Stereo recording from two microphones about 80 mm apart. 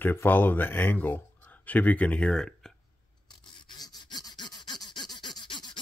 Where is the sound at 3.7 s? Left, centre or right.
Left.